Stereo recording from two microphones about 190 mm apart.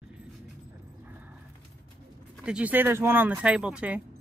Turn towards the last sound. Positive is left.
turn(degrees=-5)  # may be behind; listen again after turning